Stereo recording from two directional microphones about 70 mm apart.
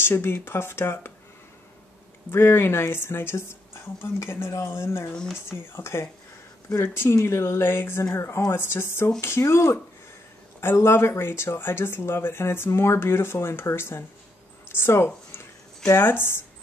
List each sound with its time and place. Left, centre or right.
0.0 s speech: left
2.3 s speech: left